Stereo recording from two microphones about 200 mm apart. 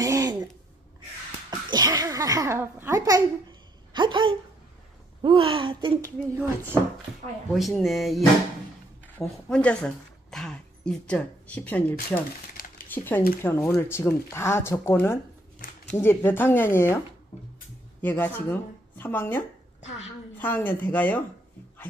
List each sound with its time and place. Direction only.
0.0 s a sound: 15° right (ahead or behind)
1.5 s a child's voice: 20° right (ahead or behind)
7.5 s speech: centre (ahead or behind)
9.2 s a woman's voice: 5° left (ahead or behind)
12.6 s a sound: 45° left (ahead or behind)
12.9 s a woman's voice: 10° left (ahead or behind)
15.6 s a sound: 45° left (ahead or behind)
16.0 s a woman's voice: 10° left (ahead or behind)
18.0 s a woman's voice: 10° left (ahead or behind)